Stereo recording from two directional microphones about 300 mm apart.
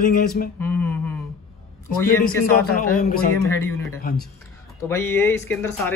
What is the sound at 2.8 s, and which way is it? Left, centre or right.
Speech, left.